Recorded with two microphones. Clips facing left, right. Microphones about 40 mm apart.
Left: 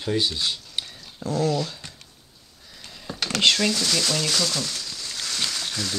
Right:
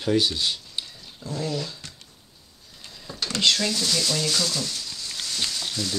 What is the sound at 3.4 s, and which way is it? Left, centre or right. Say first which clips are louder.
Speech: left 2 dB; left.